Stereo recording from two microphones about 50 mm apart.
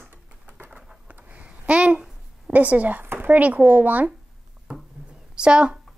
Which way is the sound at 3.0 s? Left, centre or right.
Right.